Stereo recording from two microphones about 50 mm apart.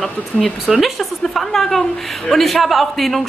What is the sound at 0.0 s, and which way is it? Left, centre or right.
Speech, centre.